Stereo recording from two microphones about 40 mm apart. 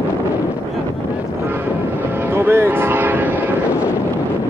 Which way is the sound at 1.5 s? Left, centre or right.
Right.